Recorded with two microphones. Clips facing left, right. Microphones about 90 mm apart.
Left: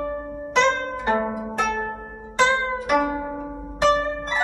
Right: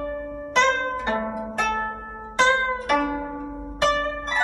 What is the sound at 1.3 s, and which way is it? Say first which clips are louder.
Zither: left 1 dB; centre (ahead or behind).